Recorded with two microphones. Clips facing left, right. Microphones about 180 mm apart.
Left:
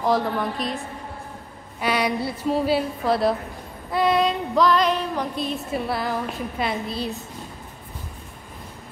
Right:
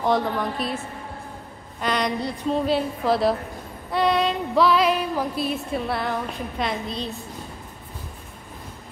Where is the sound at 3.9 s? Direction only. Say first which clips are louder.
Left 1 dB; centre (ahead or behind).